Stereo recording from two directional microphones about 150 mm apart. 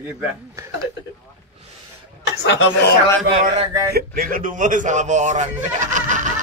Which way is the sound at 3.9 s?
90° right.